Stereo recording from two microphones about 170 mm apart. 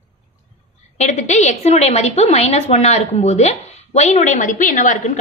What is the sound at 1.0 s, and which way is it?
A woman's voice, 40° left (ahead or behind).